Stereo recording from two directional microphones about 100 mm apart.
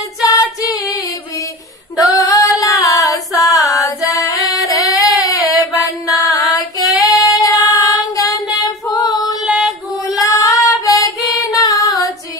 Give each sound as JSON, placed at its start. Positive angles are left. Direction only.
{"t": 0.2, "sound": "female singing", "side_deg": 40}
{"t": 2.0, "sound": "female singing", "side_deg": 35}
{"t": 4.8, "sound": "a sound", "side_deg": 35}
{"t": 6.0, "sound": "female singing", "side_deg": 35}
{"t": 7.0, "sound": "child singing", "side_deg": 40}
{"t": 9.4, "sound": "music", "side_deg": -5}
{"t": 10.2, "sound": "female singing", "side_deg": 35}